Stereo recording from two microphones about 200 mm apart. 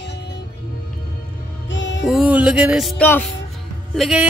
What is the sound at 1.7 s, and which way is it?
Music, 65° left (ahead or behind).